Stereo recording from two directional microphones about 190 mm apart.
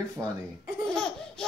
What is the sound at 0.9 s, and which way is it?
Laughter, 5° left (ahead or behind).